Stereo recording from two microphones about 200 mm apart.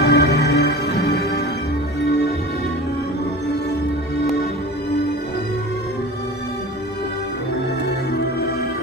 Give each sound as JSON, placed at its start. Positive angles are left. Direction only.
{"t": 0.0, "sound": "music", "side_deg": 55}